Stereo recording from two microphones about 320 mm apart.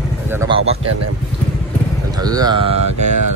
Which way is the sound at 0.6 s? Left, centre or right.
Centre.